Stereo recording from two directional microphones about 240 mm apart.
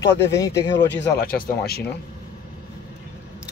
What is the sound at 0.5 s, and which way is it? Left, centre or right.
Speech, left.